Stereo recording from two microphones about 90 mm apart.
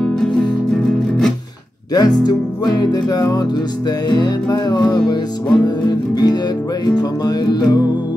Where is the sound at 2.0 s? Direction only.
50° left (ahead or behind).